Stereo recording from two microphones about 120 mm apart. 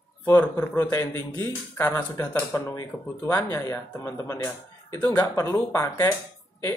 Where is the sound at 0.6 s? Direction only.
20° left (ahead or behind).